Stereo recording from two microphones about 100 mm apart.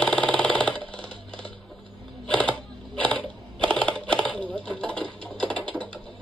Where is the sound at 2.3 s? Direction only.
10° left (ahead or behind).